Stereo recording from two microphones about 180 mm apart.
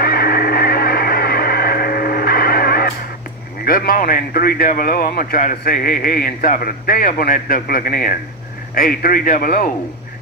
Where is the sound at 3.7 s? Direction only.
55° left (ahead or behind).